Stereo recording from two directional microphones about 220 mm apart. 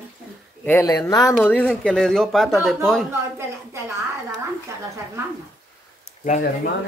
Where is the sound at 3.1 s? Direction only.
10° right (ahead or behind).